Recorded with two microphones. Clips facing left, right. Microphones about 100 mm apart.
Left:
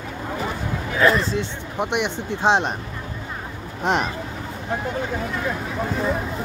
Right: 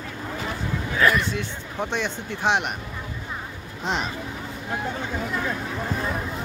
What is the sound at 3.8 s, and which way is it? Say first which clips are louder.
Speech: left 6 dB; 55° left (ahead or behind).